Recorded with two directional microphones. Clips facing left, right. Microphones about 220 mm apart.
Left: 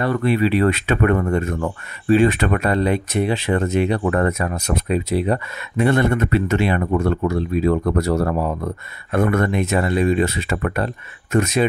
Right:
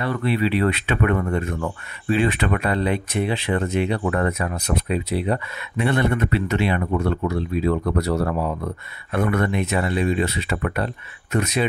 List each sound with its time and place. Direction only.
0.0 s speech: 45° left (ahead or behind)